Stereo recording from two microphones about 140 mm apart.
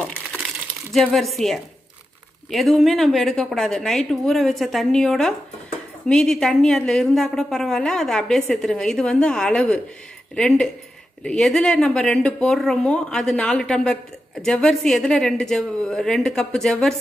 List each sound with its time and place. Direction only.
0.9 s a woman's voice: centre (ahead or behind)